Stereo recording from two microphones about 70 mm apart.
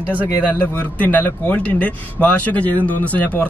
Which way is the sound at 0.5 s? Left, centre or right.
Left.